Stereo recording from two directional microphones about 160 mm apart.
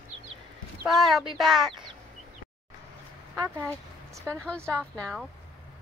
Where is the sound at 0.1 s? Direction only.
35° right (ahead or behind).